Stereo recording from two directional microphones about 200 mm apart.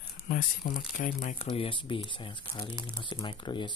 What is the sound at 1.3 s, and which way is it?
Speech, 30° left (ahead or behind).